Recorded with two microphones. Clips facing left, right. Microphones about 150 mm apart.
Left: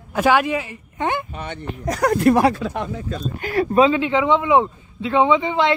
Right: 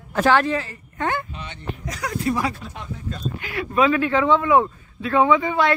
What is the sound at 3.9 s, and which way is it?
Speech, 20° left (ahead or behind).